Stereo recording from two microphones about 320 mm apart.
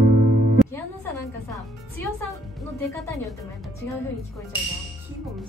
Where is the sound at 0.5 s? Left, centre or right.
Centre.